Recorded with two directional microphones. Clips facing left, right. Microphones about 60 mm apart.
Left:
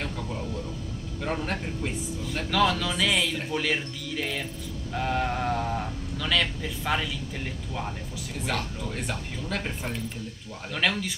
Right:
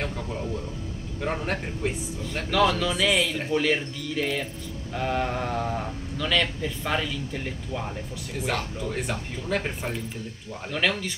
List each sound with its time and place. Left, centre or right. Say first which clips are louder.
1.2 s a man's voice: right 2 dB; centre
2.3 s speech: right 2 dB; centre
9.8 s speech: right 1 dB; centre